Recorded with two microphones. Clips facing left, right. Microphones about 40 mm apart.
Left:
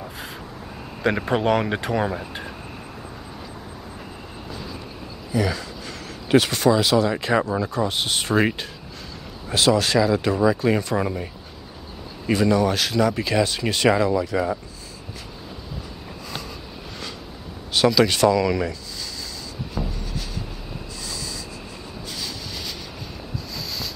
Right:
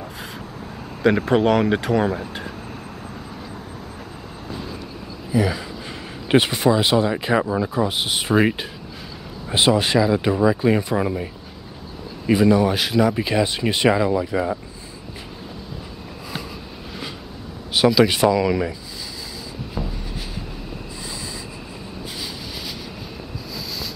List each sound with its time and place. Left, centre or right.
1.0 s speech: centre
5.3 s speech: centre
6.2 s speech: right
7.1 s speech: centre
9.5 s speech: right; by 11.2 s centre
12.3 s speech: centre
17.7 s speech: centre
19.8 s a sound: centre